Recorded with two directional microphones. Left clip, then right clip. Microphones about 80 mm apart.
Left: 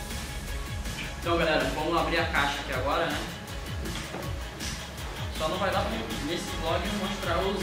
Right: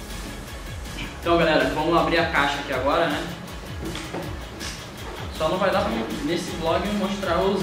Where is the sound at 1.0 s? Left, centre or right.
Centre.